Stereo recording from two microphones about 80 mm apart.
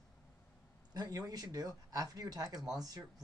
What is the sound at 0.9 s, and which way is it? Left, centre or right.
Speech, right.